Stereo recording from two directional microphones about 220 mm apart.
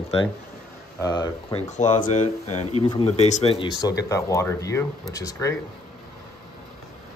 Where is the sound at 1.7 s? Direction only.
30° left (ahead or behind); by 5.6 s 15° left (ahead or behind).